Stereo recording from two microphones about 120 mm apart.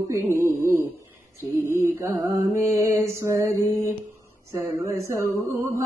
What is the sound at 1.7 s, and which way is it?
Music, 25° right (ahead or behind).